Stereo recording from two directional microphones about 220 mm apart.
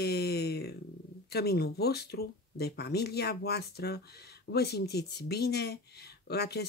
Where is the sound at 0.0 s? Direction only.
45° left (ahead or behind).